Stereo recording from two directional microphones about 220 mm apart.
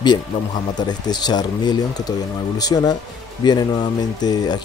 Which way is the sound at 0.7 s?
20° left (ahead or behind).